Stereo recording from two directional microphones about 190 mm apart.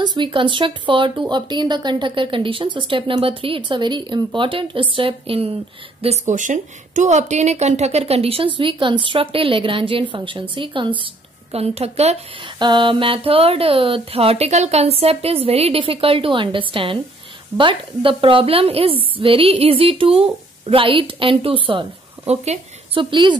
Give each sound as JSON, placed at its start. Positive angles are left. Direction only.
{"t": 0.0, "sound": "speech", "side_deg": -25}
{"t": 6.0, "sound": "speech", "side_deg": -40}